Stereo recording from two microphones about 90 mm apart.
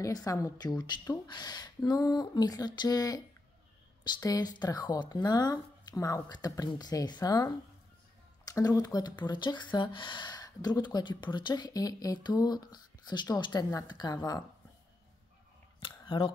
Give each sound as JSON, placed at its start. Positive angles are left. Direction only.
{"t": 0.0, "sound": "a woman's voice", "side_deg": 40}
{"t": 4.2, "sound": "speech", "side_deg": 45}
{"t": 15.8, "sound": "a sound", "side_deg": 70}